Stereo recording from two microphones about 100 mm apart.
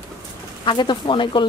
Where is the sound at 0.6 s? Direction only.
50° left (ahead or behind).